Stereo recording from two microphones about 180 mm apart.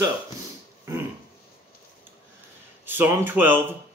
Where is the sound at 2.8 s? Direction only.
10° right (ahead or behind).